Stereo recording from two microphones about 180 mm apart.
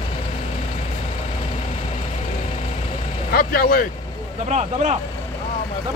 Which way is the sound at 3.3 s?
55° left (ahead or behind).